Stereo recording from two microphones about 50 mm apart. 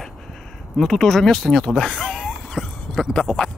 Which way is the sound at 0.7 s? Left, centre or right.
Centre.